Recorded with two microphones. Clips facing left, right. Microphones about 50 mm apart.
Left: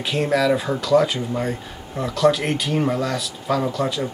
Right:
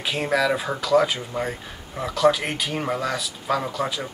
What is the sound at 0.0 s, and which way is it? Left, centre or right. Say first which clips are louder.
Speech: left 3 dB; centre.